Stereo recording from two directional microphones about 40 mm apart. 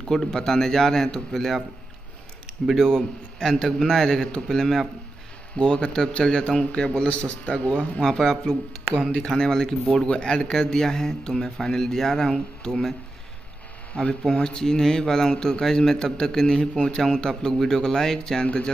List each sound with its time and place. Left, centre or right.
0.1 s speech: centre
2.7 s a man's voice: centre; by 8.0 s left
8.0 s speech: centre
10.0 s speech: left
14.3 s a man's voice: centre
17.0 s speech: centre